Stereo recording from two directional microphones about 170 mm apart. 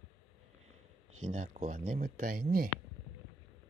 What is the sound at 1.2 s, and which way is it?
Speech, 45° right (ahead or behind).